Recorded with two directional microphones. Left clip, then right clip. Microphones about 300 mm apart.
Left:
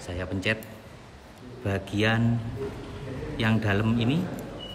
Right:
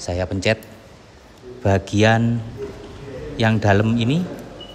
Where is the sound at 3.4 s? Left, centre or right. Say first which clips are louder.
Right 9 dB; centre.